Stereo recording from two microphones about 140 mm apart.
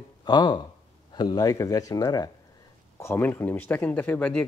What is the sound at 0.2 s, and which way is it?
Speech, 30° left (ahead or behind).